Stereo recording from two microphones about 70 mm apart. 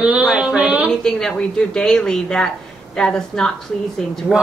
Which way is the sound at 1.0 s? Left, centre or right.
Centre.